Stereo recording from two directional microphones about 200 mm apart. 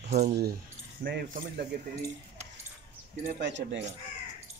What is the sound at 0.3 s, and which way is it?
Speech, 50° right (ahead or behind).